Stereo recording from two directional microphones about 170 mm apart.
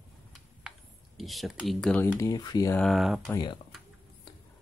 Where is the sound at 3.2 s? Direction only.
25° left (ahead or behind).